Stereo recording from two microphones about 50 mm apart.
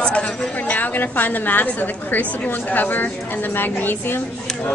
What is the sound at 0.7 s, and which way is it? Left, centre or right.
A woman's voice, left.